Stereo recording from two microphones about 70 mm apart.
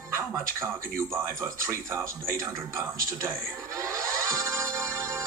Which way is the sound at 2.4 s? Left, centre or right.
Right.